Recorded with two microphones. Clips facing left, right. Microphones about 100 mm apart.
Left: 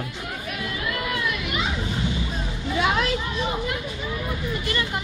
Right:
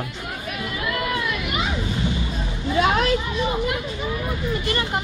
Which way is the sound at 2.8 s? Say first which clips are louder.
Right 4 dB; 45° right (ahead or behind).